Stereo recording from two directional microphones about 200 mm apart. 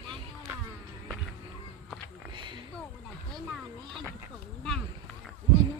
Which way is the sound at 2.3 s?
25° right (ahead or behind).